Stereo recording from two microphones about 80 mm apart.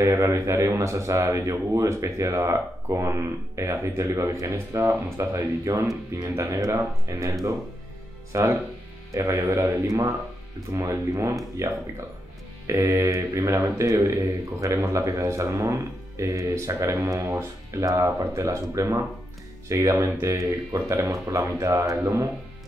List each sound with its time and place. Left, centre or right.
0.0 s speech: right
17.3 s speech: right